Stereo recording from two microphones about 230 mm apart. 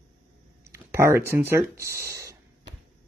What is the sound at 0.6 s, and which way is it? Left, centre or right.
Speech, centre.